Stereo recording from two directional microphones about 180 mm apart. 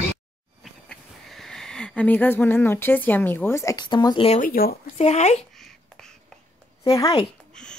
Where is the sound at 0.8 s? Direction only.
Centre (ahead or behind); by 4.3 s 25° left (ahead or behind).